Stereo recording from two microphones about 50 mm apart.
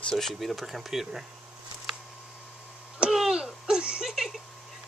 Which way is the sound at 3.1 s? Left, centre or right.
Centre.